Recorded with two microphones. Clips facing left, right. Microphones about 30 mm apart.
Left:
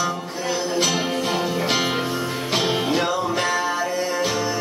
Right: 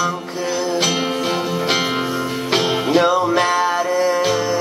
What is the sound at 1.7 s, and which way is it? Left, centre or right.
Music, centre.